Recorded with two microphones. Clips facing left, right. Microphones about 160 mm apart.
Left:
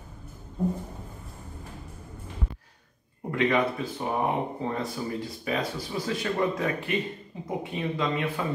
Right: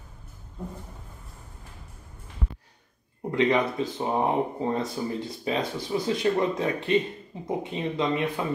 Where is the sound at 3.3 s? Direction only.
20° right (ahead or behind).